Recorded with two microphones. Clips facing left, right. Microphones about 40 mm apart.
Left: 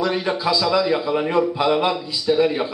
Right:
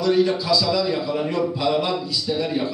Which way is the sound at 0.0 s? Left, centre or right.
Left.